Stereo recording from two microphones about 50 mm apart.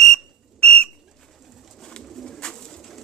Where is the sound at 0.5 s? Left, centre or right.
Left.